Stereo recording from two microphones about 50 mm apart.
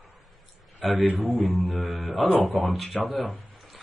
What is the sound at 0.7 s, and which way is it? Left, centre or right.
Speech, centre.